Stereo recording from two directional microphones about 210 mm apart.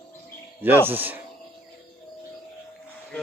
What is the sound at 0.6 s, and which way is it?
Speech, 10° right (ahead or behind).